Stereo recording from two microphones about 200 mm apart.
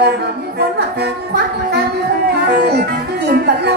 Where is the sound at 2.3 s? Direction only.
55° right (ahead or behind).